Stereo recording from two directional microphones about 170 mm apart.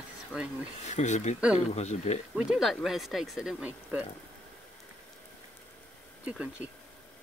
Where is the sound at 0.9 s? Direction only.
45° left (ahead or behind).